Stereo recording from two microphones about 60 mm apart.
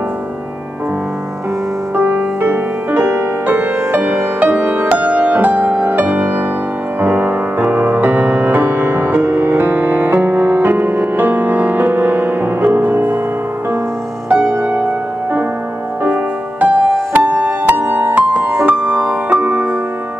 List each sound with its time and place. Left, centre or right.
2.0 s music: right
14.3 s music: right
16.0 s music: right